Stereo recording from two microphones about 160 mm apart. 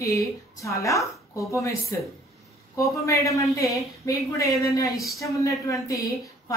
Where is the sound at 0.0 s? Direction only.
20° left (ahead or behind).